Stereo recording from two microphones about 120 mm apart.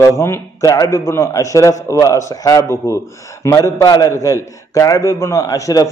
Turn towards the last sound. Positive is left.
turn(degrees=30)  # may be behind; listen again after turning